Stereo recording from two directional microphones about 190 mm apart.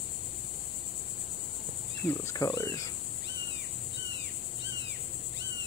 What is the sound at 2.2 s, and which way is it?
Speech, 15° left (ahead or behind).